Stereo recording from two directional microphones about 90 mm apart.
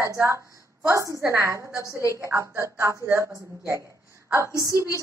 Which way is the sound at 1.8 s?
35° left (ahead or behind).